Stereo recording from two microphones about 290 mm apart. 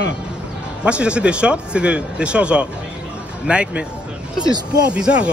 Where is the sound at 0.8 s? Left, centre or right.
Centre.